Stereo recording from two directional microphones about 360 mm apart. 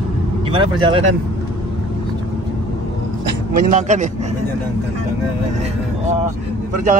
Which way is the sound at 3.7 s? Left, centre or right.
Centre.